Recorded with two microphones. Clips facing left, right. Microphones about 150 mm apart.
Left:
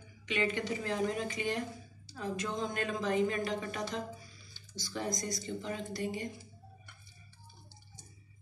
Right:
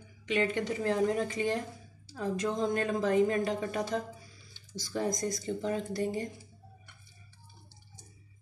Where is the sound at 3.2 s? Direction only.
50° right (ahead or behind).